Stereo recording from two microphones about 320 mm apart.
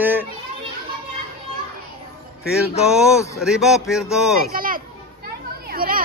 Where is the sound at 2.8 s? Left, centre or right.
Centre.